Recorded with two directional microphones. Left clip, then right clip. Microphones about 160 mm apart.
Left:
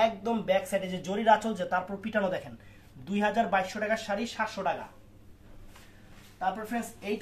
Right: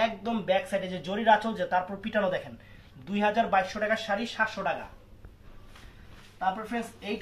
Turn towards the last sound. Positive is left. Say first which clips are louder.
# even
turn(degrees=10)  # may be behind; listen again after turning